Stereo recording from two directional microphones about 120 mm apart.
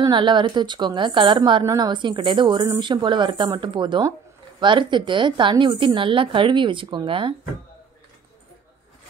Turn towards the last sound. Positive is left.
turn(degrees=-45)  # may be behind; listen again after turning